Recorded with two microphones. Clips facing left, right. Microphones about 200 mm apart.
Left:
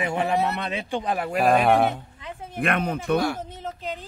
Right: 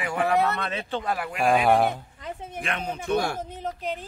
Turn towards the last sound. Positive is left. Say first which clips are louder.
# left 3 dB
turn(degrees=55)  # may be behind; listen again after turning